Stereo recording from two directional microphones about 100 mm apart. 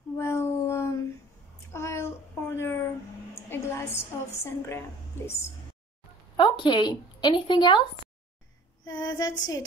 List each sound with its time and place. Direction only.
0.2 s a sound: 25° left (ahead or behind)
1.7 s child singing: 25° left (ahead or behind)
3.4 s a woman's voice: 25° left (ahead or behind)
6.6 s a woman's voice: 50° left (ahead or behind)
8.8 s female singing: 45° left (ahead or behind)